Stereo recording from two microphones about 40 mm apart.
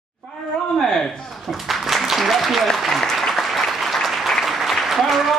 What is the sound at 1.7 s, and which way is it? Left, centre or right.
Applause, centre.